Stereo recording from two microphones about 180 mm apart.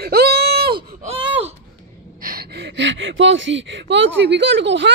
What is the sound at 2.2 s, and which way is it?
Speech, 55° right (ahead or behind).